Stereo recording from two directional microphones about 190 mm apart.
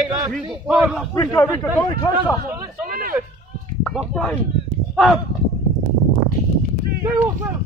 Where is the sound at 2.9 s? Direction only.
50° right (ahead or behind).